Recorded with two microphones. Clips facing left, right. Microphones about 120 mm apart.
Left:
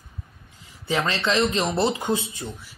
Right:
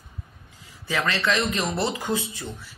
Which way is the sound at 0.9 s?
25° left (ahead or behind).